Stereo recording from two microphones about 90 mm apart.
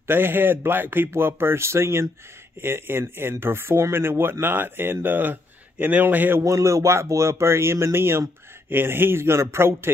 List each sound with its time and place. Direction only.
0.0 s speech: 25° right (ahead or behind)
6.4 s speech: 35° right (ahead or behind)